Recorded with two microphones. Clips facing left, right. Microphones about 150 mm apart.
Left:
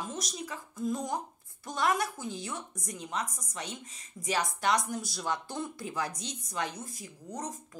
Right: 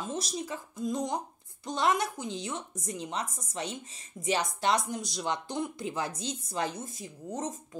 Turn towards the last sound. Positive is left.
turn(degrees=-25)  # may be behind; listen again after turning